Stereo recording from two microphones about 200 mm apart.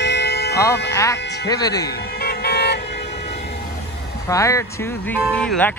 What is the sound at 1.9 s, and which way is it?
Vehicle, 55° left (ahead or behind).